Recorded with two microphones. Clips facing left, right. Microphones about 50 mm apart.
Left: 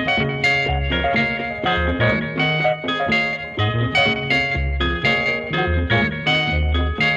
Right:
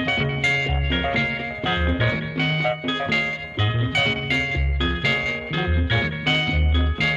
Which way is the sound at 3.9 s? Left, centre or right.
Left.